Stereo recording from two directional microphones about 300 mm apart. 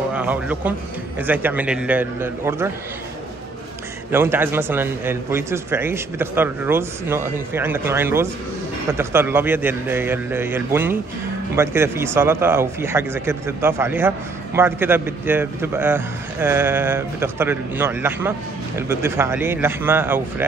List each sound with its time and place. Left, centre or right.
0.1 s a man's voice: centre
4.1 s speech: centre